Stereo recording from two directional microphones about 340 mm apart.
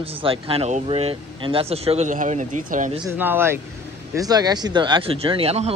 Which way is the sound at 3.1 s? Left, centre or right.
Centre.